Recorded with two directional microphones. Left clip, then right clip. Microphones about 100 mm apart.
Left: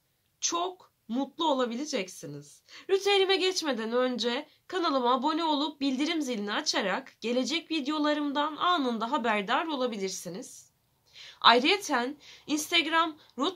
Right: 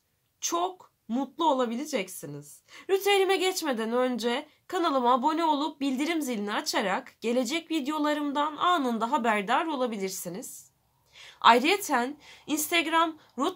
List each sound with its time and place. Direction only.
0.4 s a woman's voice: 40° right (ahead or behind)